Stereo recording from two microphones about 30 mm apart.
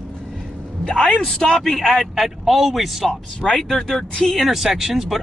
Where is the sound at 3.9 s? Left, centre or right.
Left.